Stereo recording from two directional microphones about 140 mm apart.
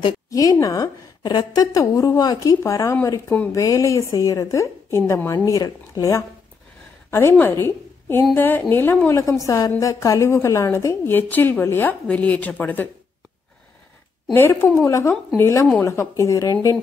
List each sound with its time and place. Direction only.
0.3 s a woman's voice: 25° left (ahead or behind)
14.3 s a woman's voice: 15° left (ahead or behind)